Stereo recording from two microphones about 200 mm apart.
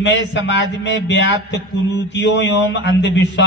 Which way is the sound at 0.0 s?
65° left (ahead or behind).